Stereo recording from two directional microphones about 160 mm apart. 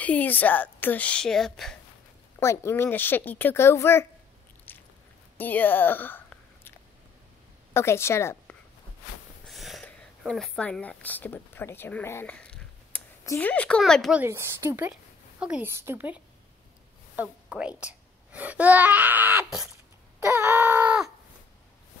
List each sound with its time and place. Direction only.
0.0 s a woman's voice: 10° left (ahead or behind)
2.4 s a woman's voice: 15° left (ahead or behind)
4.7 s biting: 10° left (ahead or behind)
5.4 s a sound: 10° left (ahead or behind)
7.7 s a woman's voice: 15° left (ahead or behind)
9.5 s a sound: centre (ahead or behind)
13.2 s speech: 20° left (ahead or behind)
13.5 s speech: 10° left (ahead or behind)
14.1 s a woman's voice: 15° right (ahead or behind)
20.2 s wail: 15° right (ahead or behind)